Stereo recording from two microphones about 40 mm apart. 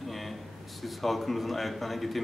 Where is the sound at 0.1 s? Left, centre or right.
Centre.